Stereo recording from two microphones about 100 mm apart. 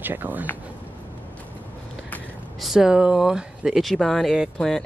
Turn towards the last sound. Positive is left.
turn(degrees=5)  # may be behind; listen again after turning